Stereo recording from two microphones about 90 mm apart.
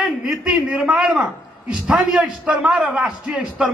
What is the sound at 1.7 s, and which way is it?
A man's voice, 10° right (ahead or behind).